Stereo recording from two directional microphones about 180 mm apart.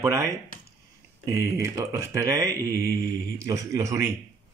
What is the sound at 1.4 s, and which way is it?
Speech, 20° right (ahead or behind).